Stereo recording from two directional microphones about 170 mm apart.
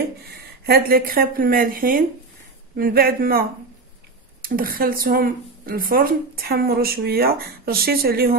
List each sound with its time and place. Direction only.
0.7 s speech: 65° right (ahead or behind)